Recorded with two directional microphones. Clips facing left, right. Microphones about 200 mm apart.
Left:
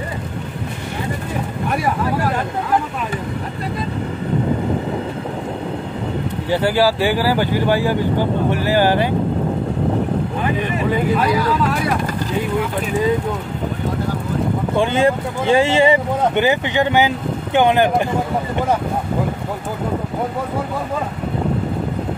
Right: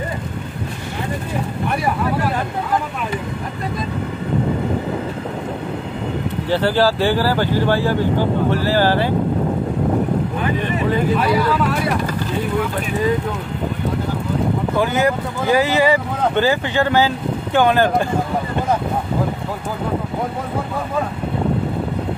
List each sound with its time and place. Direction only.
6.5 s speech: 10° left (ahead or behind)
14.8 s speech: 25° left (ahead or behind)